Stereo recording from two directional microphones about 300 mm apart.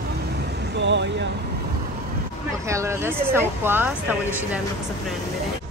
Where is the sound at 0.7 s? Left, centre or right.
Right.